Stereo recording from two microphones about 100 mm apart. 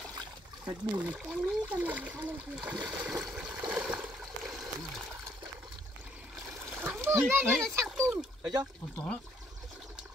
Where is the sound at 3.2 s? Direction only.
5° right (ahead or behind).